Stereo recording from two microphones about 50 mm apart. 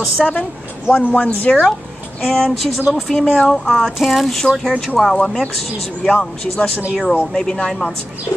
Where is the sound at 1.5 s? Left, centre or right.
Centre.